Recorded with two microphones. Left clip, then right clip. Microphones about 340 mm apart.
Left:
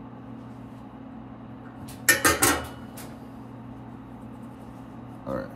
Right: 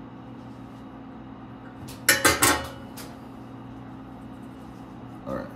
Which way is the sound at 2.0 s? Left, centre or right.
Centre.